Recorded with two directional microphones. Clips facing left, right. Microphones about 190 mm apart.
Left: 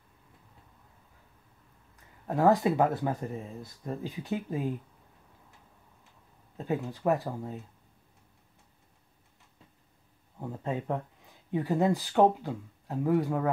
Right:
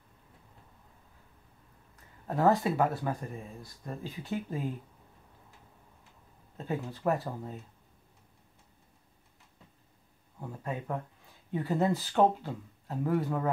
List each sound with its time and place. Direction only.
2.2 s speech: 15° left (ahead or behind)
6.6 s speech: 15° left (ahead or behind)
10.4 s speech: 20° left (ahead or behind)